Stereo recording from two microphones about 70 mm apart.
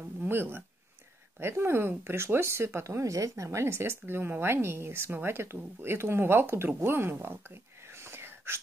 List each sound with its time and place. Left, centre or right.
0.2 s speech: right
6.8 s whispering: right